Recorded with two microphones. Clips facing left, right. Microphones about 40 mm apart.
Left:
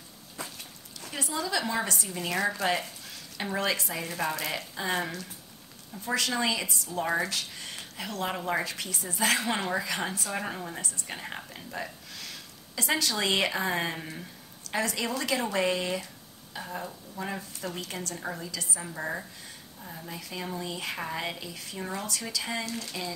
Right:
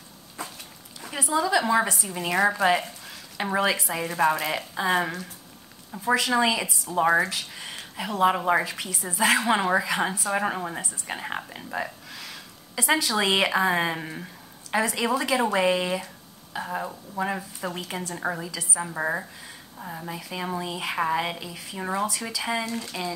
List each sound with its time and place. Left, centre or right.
1.0 s a woman's voice: centre
6.9 s a woman's voice: right
7.2 s speech: centre
8.6 s speech: centre
9.4 s a woman's voice: right
16.5 s a woman's voice: right
17.2 s a woman's voice: centre
18.8 s a woman's voice: right
20.1 s a woman's voice: centre
21.7 s a woman's voice: right